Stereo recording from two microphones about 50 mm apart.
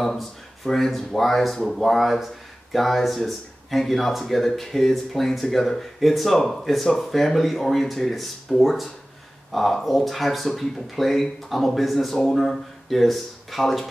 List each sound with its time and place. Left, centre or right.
0.0 s speech: centre